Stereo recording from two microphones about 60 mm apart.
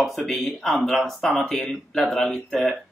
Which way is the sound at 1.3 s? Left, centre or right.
Centre.